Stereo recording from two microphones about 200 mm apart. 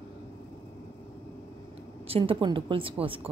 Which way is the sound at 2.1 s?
25° right (ahead or behind).